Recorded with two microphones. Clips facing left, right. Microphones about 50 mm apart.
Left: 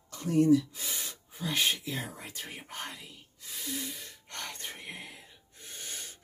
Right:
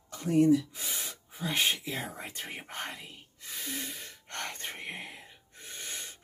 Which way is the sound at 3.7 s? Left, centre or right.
Right.